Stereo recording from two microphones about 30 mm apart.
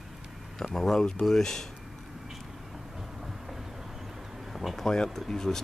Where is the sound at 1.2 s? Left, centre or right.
Centre.